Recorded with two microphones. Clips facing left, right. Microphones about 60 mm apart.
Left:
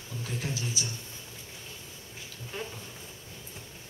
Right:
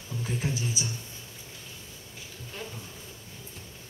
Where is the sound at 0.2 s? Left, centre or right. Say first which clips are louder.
Right 4 dB; centre.